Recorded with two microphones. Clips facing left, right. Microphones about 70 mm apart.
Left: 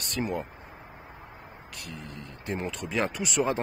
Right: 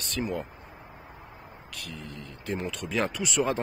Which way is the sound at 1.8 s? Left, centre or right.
Left.